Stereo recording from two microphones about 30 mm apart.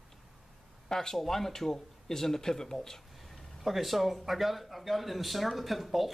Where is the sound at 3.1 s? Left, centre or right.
Centre.